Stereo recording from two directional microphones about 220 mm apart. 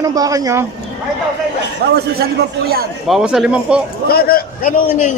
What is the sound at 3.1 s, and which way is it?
Speech, centre (ahead or behind).